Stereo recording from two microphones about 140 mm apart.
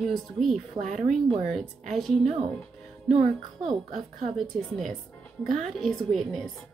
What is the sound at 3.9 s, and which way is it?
Speech, 65° right (ahead or behind).